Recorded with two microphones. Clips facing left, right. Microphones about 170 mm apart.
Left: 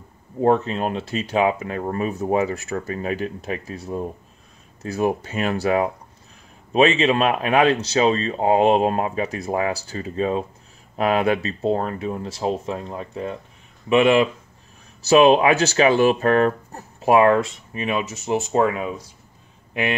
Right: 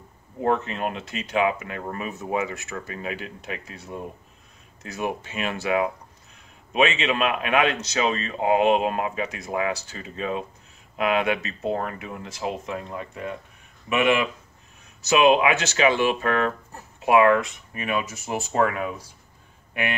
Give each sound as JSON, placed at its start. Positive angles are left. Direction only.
{"t": 0.4, "sound": "speech", "side_deg": 30}